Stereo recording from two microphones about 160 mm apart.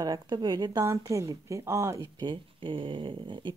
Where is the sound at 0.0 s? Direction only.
25° right (ahead or behind).